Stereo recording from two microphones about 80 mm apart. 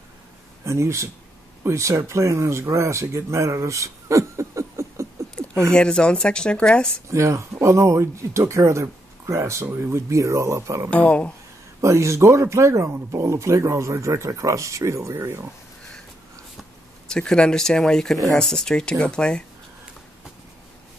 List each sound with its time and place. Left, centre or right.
0.7 s speech: right
5.6 s speech: centre
7.1 s speech: right
10.9 s speech: centre
11.8 s speech: right
17.1 s speech: centre